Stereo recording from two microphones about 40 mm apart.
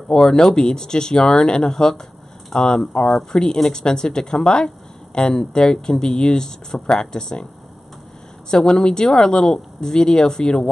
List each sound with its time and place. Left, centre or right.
0.1 s speech: centre
8.5 s speech: centre